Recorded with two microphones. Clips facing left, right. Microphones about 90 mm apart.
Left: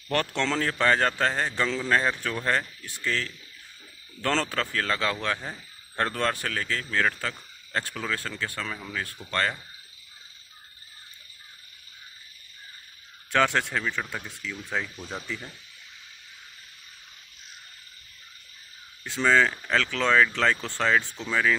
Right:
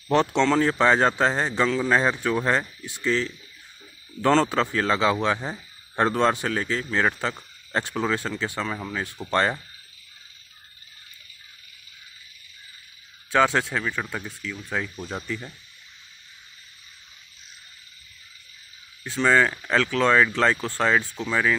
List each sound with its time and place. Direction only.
0.1 s speech: 20° right (ahead or behind)
13.3 s speech: 10° right (ahead or behind)
19.2 s speech: 10° right (ahead or behind)